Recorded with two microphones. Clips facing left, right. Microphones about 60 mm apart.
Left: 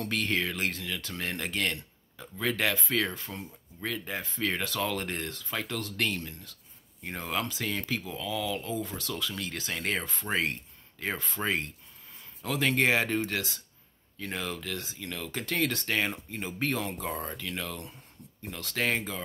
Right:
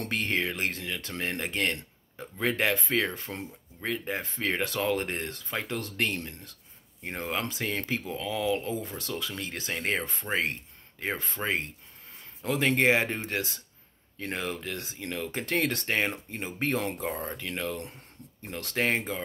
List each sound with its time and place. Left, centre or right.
0.1 s speech: right